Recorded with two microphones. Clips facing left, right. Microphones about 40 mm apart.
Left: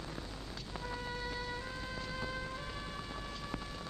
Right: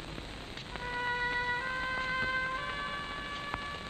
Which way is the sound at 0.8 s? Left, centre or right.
Right.